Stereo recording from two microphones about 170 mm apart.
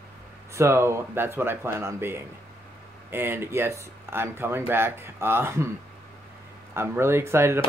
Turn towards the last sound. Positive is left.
turn(degrees=-15)  # may be behind; listen again after turning